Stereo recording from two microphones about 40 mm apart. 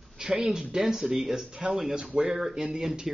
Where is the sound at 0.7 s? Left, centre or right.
Centre.